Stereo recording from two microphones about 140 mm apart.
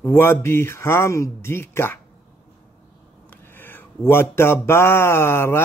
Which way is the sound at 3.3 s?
15° left (ahead or behind).